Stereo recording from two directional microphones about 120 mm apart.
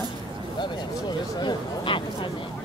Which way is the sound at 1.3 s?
40° left (ahead or behind).